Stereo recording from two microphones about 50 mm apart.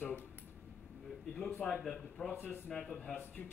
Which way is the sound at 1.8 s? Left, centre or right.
Centre.